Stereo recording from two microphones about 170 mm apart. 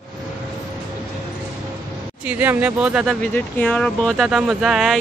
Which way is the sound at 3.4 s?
10° left (ahead or behind).